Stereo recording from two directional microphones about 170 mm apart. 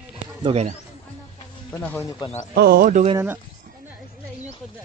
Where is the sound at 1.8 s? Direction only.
5° left (ahead or behind).